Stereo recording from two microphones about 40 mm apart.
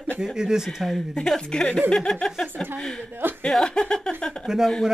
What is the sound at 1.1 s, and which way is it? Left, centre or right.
Speech, centre.